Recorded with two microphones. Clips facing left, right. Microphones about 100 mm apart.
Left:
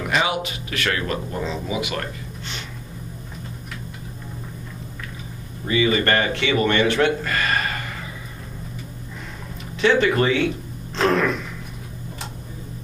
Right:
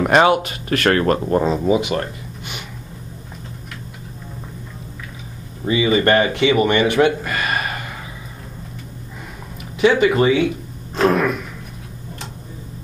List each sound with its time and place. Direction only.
0.0 s speech: 50° right (ahead or behind)
1.8 s speech: 25° right (ahead or behind)
5.7 s speech: 20° right (ahead or behind)
9.8 s speech: 15° right (ahead or behind)